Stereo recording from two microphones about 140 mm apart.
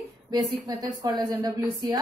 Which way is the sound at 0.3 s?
25° right (ahead or behind).